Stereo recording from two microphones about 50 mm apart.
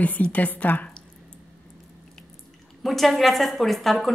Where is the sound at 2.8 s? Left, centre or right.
Centre.